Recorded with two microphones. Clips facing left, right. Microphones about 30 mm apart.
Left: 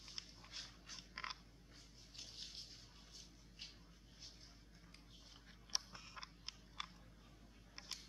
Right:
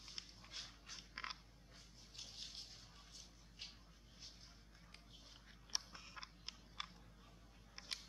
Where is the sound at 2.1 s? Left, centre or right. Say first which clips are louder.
Even; centre.